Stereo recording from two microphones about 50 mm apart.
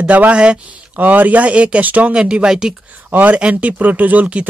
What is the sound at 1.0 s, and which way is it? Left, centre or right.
Speech, right.